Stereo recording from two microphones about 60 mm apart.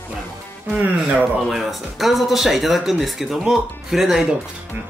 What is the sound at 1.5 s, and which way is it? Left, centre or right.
Speech, centre.